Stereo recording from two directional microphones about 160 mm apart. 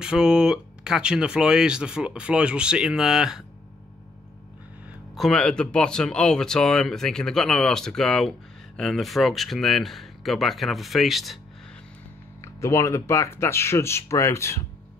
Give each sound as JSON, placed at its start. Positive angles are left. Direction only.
{"t": 0.0, "sound": "speech", "side_deg": -5}
{"t": 5.1, "sound": "speech", "side_deg": 0}
{"t": 12.5, "sound": "speech", "side_deg": 20}